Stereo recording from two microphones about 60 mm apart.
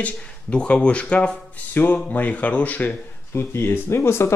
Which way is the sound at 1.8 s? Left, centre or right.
Left.